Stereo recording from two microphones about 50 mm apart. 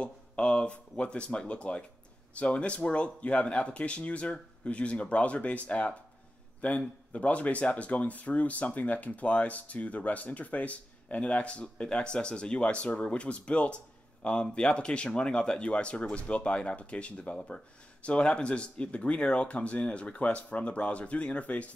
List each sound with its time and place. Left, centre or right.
0.0 s speech: left